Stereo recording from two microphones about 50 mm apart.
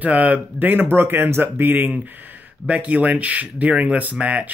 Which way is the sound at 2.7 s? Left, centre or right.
Right.